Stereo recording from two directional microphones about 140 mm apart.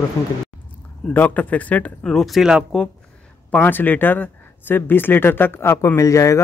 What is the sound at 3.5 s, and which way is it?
Speech, 15° left (ahead or behind).